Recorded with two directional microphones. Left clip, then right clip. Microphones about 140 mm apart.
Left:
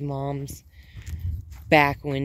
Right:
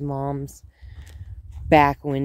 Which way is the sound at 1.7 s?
30° right (ahead or behind).